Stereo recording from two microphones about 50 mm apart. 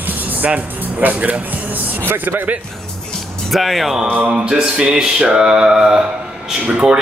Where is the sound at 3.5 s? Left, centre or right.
Centre.